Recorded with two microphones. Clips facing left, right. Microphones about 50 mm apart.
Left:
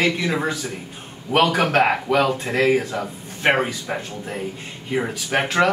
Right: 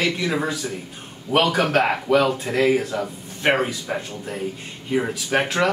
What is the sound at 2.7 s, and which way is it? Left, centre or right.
A man's voice, centre.